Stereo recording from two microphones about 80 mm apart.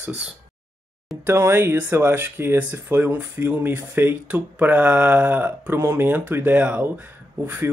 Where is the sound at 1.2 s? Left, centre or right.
Right.